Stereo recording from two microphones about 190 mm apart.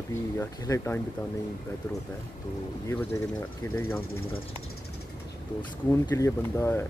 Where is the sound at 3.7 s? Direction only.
10° left (ahead or behind).